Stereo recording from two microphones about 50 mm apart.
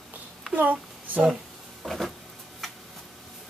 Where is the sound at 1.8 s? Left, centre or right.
Centre.